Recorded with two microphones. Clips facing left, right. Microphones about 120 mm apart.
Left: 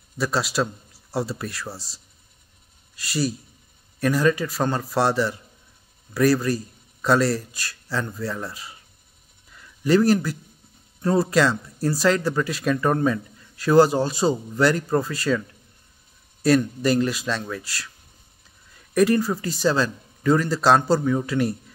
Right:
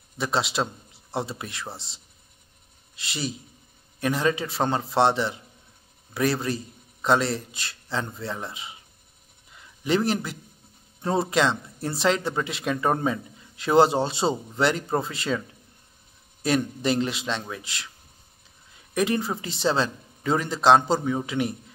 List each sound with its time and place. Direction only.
0.2 s speech: 20° right (ahead or behind)
3.0 s speech: 20° right (ahead or behind)
9.5 s a sound: 20° right (ahead or behind)
11.0 s speech: 25° right (ahead or behind)
16.4 s speech: 20° right (ahead or behind)
18.9 s speech: 20° right (ahead or behind)